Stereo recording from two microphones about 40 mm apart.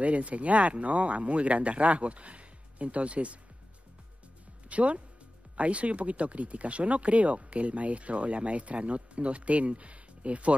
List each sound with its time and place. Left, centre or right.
0.0 s speech: right
4.6 s speech: right